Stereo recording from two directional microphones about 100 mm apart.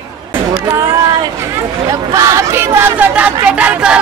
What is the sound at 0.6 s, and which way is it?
Speech, 25° right (ahead or behind).